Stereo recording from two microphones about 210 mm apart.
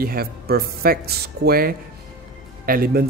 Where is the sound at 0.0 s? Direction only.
45° right (ahead or behind).